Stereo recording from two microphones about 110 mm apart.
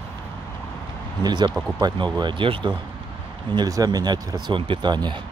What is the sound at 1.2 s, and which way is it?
Speech, 40° right (ahead or behind).